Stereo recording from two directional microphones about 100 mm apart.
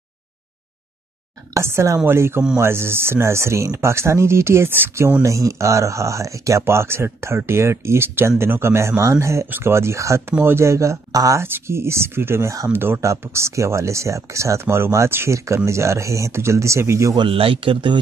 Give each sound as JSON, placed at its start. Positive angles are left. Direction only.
{"t": 1.5, "sound": "speech", "side_deg": -25}
{"t": 11.4, "sound": "speech", "side_deg": -25}
{"t": 17.3, "sound": "speech", "side_deg": -65}